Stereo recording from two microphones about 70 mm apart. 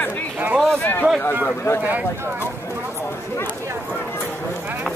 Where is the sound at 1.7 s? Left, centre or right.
Left.